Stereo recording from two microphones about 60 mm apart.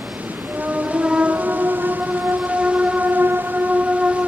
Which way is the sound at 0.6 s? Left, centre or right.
Right.